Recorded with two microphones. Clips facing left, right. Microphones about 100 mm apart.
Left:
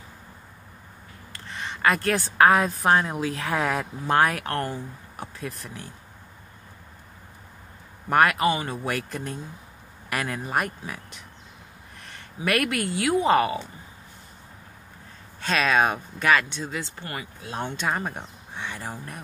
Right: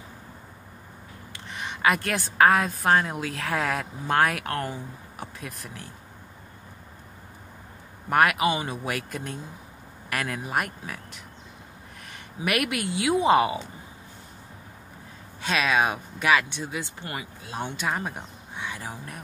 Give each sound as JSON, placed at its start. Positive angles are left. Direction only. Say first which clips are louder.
{"t": 1.5, "sound": "a woman's voice", "louder": "left 1 dB", "side_deg": -15}
{"t": 8.1, "sound": "a woman's voice", "louder": "left 1 dB", "side_deg": -5}
{"t": 8.5, "sound": "speech", "louder": "left 2 dB", "side_deg": -15}
{"t": 8.8, "sound": "a woman's voice", "louder": "left 2 dB", "side_deg": -5}
{"t": 12.4, "sound": "speech", "louder": "left 2 dB", "side_deg": -15}
{"t": 15.4, "sound": "speech", "louder": "left 2 dB", "side_deg": -5}
{"t": 17.7, "sound": "speech", "louder": "left 2 dB", "side_deg": 0}